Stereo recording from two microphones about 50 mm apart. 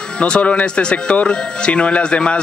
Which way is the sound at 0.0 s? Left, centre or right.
Centre.